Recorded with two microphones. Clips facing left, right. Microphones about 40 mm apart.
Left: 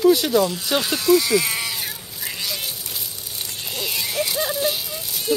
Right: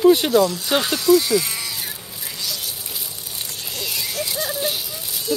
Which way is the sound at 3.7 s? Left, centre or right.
Centre.